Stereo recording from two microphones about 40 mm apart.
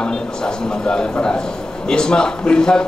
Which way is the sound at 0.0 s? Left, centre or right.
Centre.